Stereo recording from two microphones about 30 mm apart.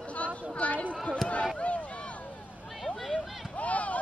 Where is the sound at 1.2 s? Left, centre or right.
Centre.